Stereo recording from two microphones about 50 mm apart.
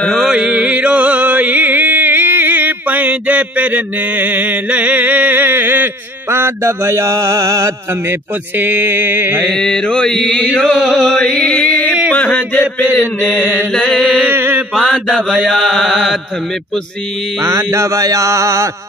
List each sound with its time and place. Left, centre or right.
0.4 s music: right
6.3 s mantra: right
8.1 s speech: right
9.4 s mantra: centre
10.8 s chant: centre
11.1 s music: centre
12.1 s a sound: left
12.4 s a man's voice: left
13.4 s mantra: right
13.9 s a sound: right
14.3 s mantra: right
14.7 s mantra: centre
17.4 s mantra: right